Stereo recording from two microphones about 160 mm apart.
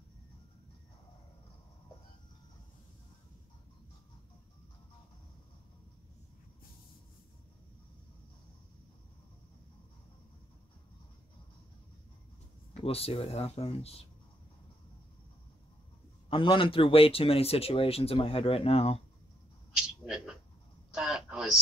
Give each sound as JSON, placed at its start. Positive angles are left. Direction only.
{"t": 12.8, "sound": "speech", "side_deg": 40}
{"t": 16.3, "sound": "speech", "side_deg": 35}
{"t": 19.7, "sound": "a sound", "side_deg": -5}
{"t": 20.9, "sound": "speech", "side_deg": -5}